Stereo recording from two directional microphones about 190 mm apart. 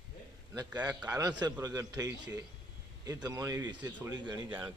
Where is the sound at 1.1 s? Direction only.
20° right (ahead or behind).